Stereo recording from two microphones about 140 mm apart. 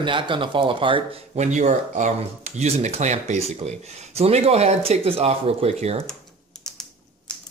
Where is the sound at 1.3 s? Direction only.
60° right (ahead or behind).